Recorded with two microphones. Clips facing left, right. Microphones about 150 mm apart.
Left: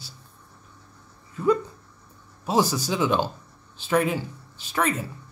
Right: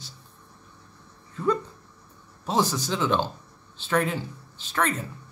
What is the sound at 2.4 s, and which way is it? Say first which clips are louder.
Speech: left 2 dB; 10° left (ahead or behind).